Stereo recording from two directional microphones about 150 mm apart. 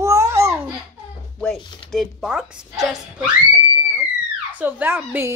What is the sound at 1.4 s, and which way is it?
Speech, centre (ahead or behind).